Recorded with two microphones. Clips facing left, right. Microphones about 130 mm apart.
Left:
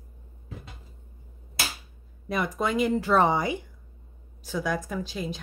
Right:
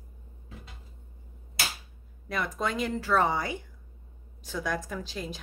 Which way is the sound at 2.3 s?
15° left (ahead or behind).